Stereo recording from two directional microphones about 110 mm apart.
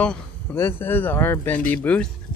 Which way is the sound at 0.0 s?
15° left (ahead or behind).